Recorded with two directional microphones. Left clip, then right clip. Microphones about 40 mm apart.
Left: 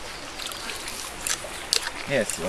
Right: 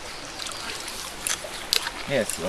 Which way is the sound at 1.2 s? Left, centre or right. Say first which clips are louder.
Even; right.